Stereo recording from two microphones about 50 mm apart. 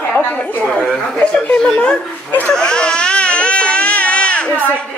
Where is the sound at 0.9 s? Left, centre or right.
Centre.